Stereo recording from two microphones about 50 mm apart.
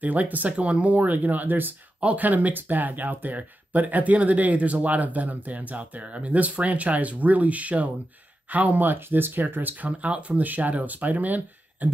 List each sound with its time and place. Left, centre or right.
0.0 s speech: right